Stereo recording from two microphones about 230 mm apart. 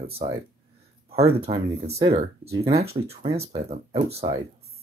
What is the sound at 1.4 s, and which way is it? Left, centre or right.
Speech, right.